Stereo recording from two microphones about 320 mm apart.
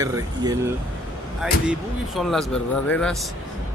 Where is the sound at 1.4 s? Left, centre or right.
Centre.